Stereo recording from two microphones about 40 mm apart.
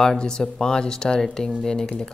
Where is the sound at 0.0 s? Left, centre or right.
Centre.